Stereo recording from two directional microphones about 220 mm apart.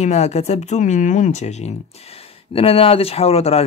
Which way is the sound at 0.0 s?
30° left (ahead or behind).